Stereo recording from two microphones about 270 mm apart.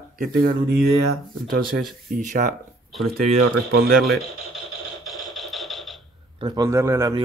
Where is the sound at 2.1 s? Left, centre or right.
Right.